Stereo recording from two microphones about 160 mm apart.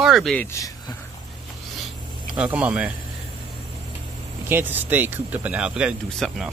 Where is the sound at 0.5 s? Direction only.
20° left (ahead or behind).